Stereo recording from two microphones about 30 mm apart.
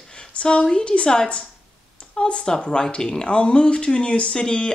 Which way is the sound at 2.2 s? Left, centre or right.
Left.